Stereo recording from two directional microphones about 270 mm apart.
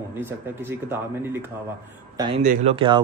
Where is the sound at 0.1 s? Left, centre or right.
Centre.